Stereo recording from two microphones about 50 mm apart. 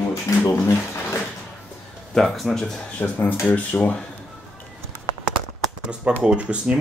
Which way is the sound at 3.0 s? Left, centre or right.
Left.